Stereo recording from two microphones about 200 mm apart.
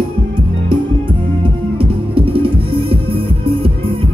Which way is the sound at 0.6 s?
25° right (ahead or behind).